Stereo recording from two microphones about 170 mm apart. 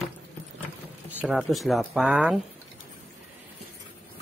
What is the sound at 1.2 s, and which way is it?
Speech, 5° right (ahead or behind).